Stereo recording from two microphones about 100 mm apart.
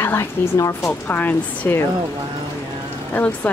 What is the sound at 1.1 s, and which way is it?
Speech, 20° left (ahead or behind).